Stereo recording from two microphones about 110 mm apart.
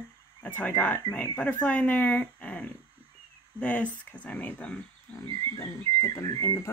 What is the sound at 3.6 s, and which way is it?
Speech, 15° left (ahead or behind).